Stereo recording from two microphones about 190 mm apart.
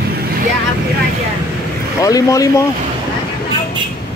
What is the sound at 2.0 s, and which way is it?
Speech, 20° left (ahead or behind).